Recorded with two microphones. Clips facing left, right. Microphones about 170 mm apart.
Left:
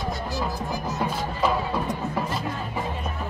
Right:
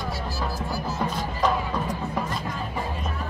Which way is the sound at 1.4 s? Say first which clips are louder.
Even; 5° left (ahead or behind).